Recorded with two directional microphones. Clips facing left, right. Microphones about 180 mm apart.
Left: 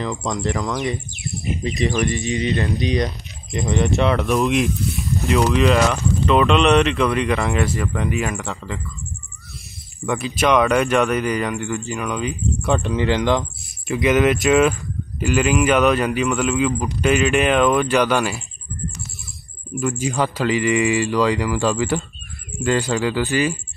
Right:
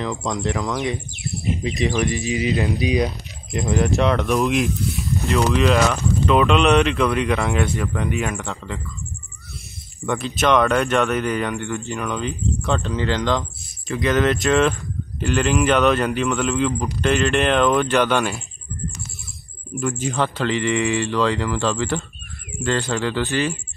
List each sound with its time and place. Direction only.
0.0 s speech: centre (ahead or behind)
10.0 s speech: centre (ahead or behind)
12.6 s speech: 15° left (ahead or behind)
14.3 s speech: centre (ahead or behind)
19.8 s speech: 5° left (ahead or behind)